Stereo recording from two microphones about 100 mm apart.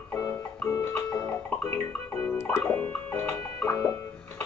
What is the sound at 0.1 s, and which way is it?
Music, 30° left (ahead or behind).